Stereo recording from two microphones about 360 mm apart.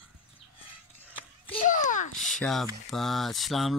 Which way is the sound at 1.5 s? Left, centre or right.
Centre.